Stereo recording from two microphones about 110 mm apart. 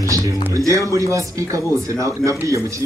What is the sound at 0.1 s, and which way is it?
Speech, 30° right (ahead or behind).